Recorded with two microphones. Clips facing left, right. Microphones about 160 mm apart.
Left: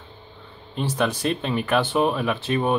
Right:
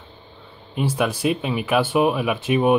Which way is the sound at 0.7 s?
10° right (ahead or behind).